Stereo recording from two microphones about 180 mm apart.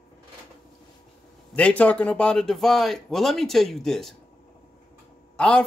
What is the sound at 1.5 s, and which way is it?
Speech, 10° left (ahead or behind).